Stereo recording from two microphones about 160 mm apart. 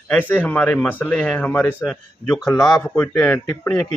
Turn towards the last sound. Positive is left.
turn(degrees=10)  # may be behind; listen again after turning